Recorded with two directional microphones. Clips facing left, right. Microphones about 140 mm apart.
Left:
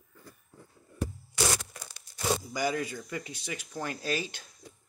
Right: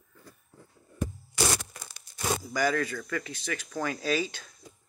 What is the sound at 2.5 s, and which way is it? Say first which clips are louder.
Speech: right 7 dB; 10° left (ahead or behind).